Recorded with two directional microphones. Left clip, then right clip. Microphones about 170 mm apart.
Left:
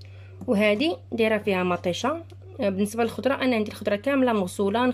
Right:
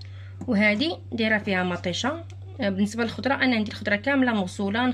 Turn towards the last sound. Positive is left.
turn(degrees=20)  # may be behind; listen again after turning